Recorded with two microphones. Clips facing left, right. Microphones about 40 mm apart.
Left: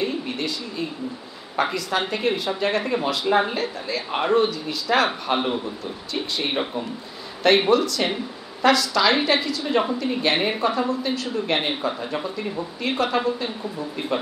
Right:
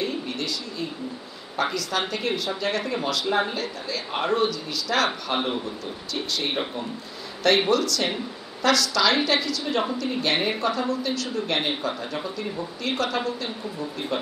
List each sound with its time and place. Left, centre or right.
0.0 s a sound: centre
1.6 s speech: left
7.4 s a woman's voice: centre